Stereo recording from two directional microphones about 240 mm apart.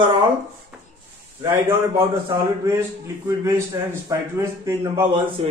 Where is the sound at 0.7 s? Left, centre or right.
Centre.